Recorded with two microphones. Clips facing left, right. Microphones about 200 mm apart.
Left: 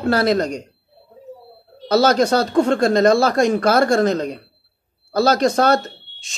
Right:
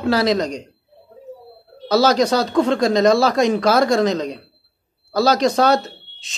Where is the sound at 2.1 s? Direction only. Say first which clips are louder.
Left 1 dB; 55° left (ahead or behind).